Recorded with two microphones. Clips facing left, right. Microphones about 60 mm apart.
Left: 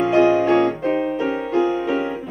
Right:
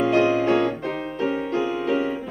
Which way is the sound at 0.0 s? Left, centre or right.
Centre.